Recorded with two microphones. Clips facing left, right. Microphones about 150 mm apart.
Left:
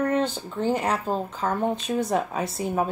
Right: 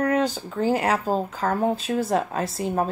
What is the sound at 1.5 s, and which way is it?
Speech, 5° right (ahead or behind).